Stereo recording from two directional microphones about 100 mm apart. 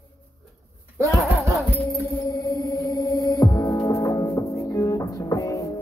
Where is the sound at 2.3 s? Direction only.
35° left (ahead or behind).